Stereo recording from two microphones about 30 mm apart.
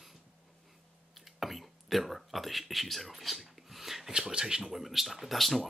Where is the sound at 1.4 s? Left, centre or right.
Centre.